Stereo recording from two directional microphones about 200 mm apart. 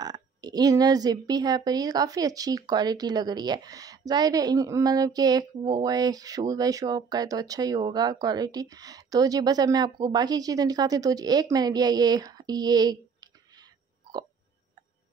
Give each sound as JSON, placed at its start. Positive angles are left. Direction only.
{"t": 0.0, "sound": "speech", "side_deg": -20}